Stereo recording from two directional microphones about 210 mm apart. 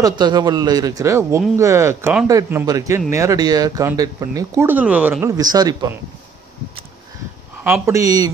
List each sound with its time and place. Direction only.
0.0 s speech: 20° right (ahead or behind)
7.6 s speech: 10° right (ahead or behind)